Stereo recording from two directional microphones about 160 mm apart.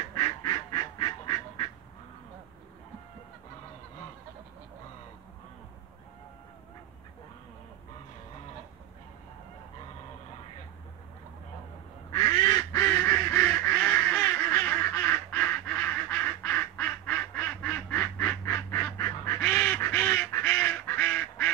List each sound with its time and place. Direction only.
0.2 s duck: 25° left (ahead or behind)
12.1 s duck: 25° left (ahead or behind); by 19.8 s 10° left (ahead or behind)
19.8 s goose: 10° left (ahead or behind)